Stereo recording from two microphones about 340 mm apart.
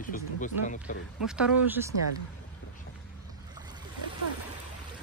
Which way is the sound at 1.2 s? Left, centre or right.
Centre.